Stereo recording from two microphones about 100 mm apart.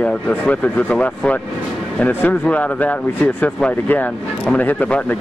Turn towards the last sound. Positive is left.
turn(degrees=15)  # may be behind; listen again after turning